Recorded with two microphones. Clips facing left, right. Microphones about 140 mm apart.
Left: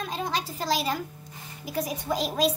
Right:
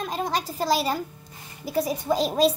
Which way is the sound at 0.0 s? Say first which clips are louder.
Right 3 dB; 45° right (ahead or behind).